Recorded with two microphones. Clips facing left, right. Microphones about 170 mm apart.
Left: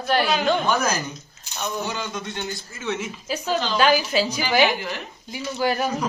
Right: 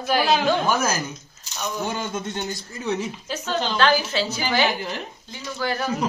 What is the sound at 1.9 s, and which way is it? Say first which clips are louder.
A man's voice: right 2 dB; 50° right (ahead or behind).